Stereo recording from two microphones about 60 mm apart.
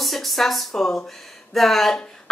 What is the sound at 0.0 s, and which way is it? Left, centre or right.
A woman's voice, centre.